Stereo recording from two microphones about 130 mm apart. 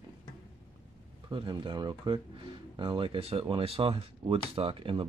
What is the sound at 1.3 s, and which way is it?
Speech, 40° right (ahead or behind).